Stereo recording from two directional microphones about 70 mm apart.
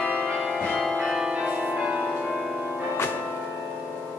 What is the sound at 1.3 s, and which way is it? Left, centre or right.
Change ringing, right.